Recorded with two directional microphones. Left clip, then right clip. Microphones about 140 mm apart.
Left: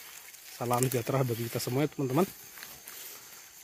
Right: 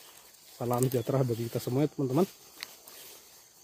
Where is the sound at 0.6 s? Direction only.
15° right (ahead or behind).